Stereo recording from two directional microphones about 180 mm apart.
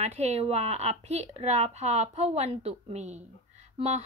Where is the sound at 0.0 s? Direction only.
35° right (ahead or behind).